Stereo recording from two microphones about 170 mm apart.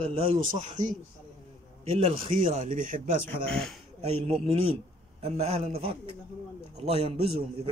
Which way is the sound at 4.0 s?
35° right (ahead or behind).